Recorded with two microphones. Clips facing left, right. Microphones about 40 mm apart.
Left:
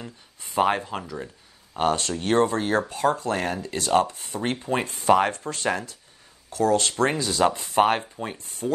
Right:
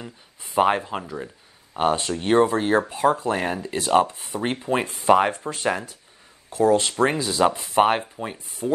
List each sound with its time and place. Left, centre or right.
0.0 s speech: centre
8.6 s speech: centre